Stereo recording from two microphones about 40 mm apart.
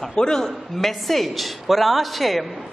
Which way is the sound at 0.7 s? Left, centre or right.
Centre.